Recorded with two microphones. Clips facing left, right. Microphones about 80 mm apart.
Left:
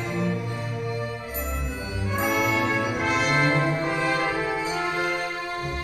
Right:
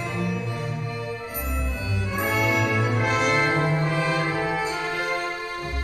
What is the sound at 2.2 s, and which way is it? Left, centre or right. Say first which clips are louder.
Music: even; centre.